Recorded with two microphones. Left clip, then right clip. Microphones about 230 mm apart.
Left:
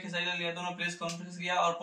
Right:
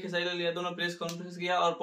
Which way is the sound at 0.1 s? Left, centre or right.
Centre.